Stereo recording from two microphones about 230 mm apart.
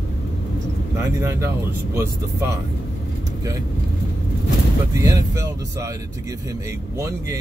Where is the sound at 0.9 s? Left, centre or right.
Centre.